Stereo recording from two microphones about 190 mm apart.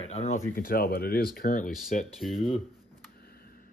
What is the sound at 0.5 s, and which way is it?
Speech, 50° left (ahead or behind).